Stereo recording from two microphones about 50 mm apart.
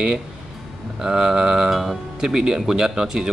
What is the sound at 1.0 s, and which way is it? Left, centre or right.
Speech, centre.